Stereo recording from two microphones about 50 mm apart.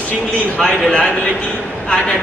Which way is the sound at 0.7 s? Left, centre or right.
Centre.